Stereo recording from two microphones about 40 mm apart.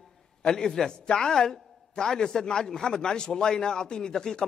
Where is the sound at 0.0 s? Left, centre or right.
Centre.